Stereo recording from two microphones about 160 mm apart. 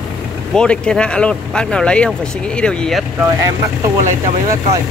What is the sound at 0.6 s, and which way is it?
Speech, 5° left (ahead or behind).